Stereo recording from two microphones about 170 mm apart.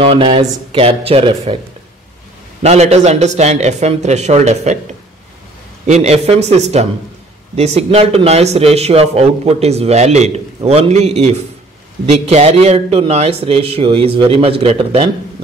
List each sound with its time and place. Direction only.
0.0 s speech: 35° right (ahead or behind)
2.6 s speech: 40° right (ahead or behind)
5.9 s speech: 40° right (ahead or behind)